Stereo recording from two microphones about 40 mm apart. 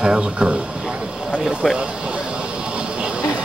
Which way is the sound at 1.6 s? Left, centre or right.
Centre.